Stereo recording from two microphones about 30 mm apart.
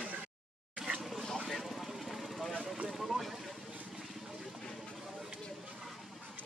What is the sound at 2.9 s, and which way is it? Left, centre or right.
Boat, centre.